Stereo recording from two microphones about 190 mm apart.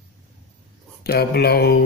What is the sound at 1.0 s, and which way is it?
Mantra, 55° left (ahead or behind).